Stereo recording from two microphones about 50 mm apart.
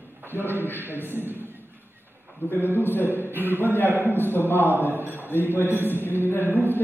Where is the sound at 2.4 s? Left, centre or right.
Left.